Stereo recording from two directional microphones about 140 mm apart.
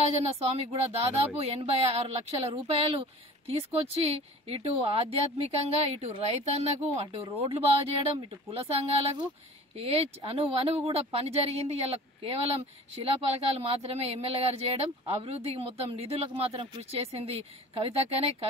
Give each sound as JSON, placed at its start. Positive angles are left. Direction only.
{"t": 0.0, "sound": "speech", "side_deg": -45}